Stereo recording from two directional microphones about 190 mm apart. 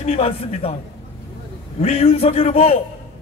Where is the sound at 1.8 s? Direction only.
30° left (ahead or behind).